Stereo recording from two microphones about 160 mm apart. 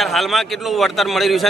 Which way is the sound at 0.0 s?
Centre (ahead or behind).